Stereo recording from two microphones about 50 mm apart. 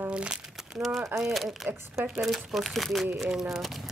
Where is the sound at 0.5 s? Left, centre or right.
Centre.